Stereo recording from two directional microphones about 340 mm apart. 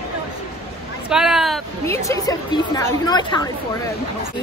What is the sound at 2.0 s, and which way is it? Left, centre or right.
Speech, centre.